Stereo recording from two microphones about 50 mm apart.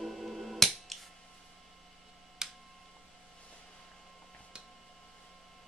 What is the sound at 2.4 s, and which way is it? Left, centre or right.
Tick-tock, centre.